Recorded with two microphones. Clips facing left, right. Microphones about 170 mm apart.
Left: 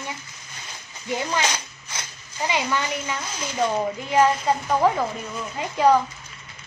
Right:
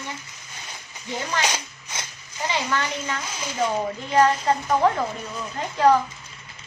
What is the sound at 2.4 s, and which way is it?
A woman's voice, 15° left (ahead or behind).